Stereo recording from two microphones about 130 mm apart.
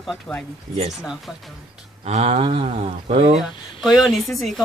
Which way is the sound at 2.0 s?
55° right (ahead or behind).